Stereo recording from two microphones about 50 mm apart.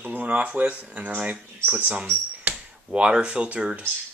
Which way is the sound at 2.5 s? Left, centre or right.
Right.